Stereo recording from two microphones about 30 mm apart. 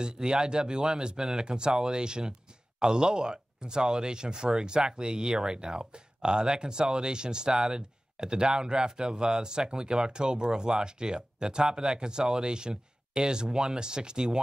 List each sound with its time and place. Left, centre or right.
0.0 s speech: right